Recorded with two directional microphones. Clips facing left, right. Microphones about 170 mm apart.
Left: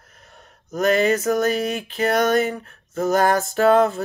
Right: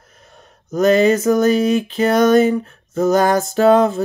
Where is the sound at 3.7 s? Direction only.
20° right (ahead or behind).